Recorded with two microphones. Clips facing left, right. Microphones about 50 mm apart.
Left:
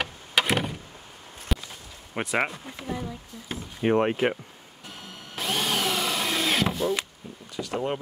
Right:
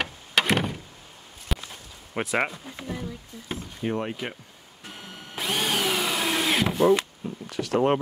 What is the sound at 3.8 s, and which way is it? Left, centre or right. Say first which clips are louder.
Speech: left 7 dB; left.